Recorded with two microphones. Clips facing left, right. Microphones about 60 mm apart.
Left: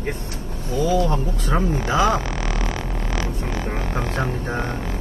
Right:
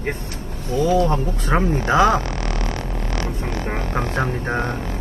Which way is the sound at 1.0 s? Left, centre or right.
Right.